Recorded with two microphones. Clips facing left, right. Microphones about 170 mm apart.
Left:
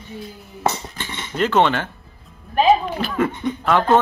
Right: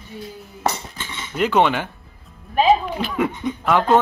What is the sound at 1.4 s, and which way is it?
Speech, 10° right (ahead or behind).